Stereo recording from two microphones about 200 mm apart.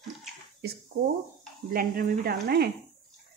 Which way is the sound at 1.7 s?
45° right (ahead or behind).